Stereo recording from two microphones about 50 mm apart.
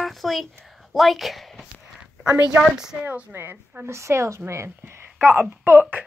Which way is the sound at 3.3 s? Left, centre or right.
Right.